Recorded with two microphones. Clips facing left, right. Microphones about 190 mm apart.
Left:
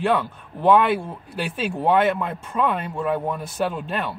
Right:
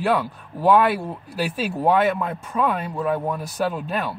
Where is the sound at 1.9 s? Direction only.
Centre (ahead or behind).